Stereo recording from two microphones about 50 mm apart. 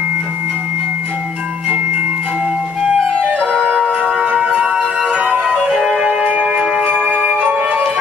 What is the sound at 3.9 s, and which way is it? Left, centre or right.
Music, right.